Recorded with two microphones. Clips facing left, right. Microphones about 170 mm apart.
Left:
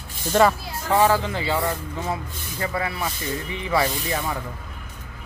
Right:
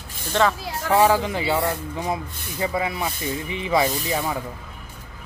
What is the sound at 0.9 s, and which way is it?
Speech, 15° right (ahead or behind).